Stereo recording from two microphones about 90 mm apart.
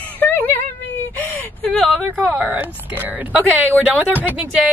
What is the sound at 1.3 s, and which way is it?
Whimper, 10° left (ahead or behind).